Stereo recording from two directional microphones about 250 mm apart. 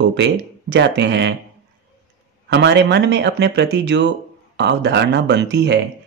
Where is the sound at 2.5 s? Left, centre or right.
Right.